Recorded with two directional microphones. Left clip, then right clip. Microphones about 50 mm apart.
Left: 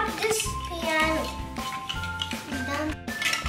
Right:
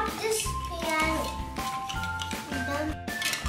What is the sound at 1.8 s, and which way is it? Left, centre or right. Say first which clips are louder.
Music: left 1 dB; centre.